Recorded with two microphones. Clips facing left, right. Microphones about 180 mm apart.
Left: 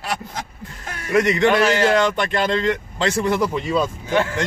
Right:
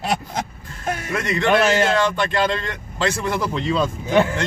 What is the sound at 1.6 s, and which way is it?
Speech, 20° right (ahead or behind).